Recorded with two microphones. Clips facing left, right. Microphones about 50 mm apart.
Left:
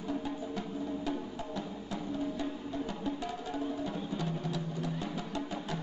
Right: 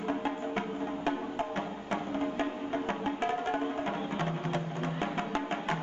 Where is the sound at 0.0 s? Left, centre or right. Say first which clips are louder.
Right 4 dB; right.